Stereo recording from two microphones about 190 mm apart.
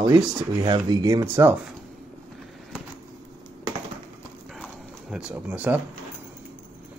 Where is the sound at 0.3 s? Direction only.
20° right (ahead or behind).